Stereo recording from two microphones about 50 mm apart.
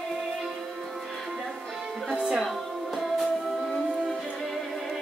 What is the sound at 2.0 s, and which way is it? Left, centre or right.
Music, centre.